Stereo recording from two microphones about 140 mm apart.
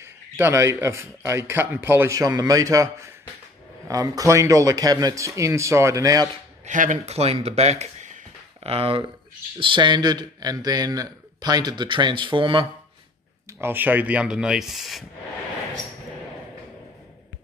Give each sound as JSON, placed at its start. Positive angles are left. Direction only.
{"t": 0.0, "sound": "a man's voice", "side_deg": -20}
{"t": 6.6, "sound": "speech", "side_deg": -65}
{"t": 8.6, "sound": "a man's voice", "side_deg": -45}
{"t": 13.6, "sound": "speech", "side_deg": -15}